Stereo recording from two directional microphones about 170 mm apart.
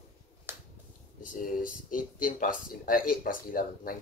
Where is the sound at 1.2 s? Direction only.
50° left (ahead or behind).